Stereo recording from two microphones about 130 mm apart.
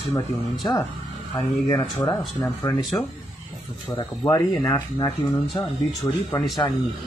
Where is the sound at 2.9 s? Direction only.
15° left (ahead or behind).